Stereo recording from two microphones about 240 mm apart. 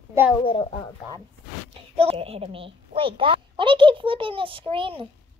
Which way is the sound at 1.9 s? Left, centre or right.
Right.